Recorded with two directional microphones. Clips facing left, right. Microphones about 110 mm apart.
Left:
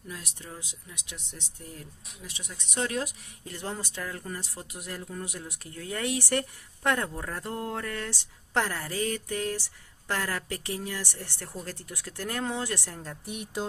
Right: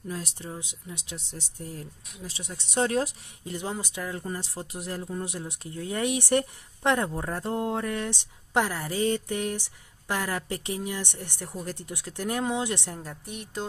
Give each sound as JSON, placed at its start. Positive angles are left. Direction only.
{"t": 0.1, "sound": "speech", "side_deg": -30}
{"t": 3.4, "sound": "speech", "side_deg": -15}
{"t": 4.2, "sound": "speech", "side_deg": -25}
{"t": 13.2, "sound": "speech", "side_deg": 5}